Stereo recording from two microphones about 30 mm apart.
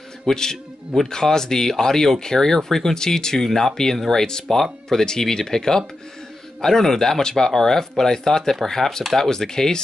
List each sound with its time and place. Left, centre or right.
0.3 s speech: centre